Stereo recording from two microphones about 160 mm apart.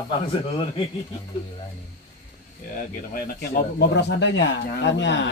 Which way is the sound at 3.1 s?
80° left.